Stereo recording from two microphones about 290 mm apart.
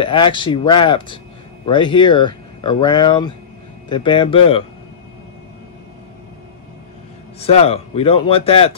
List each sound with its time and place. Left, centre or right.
0.0 s speech: centre
7.3 s speech: left